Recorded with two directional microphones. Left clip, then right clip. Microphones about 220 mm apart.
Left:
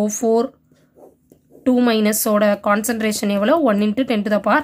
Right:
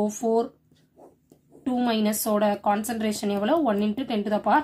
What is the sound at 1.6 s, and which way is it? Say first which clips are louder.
Speech: left 9 dB; 45° left (ahead or behind).